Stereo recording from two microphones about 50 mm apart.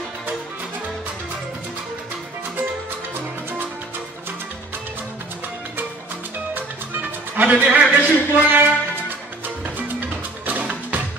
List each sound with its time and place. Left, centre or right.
6.5 s music: right
7.9 s a man's voice: right
9.8 s music: right